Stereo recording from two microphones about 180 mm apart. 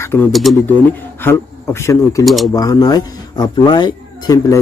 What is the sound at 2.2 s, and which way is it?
Speech, centre (ahead or behind).